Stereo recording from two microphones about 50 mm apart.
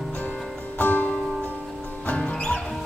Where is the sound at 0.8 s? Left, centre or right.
Left.